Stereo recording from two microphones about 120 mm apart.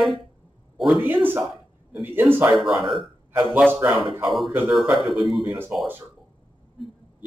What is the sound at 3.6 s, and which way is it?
Speech, 15° right (ahead or behind).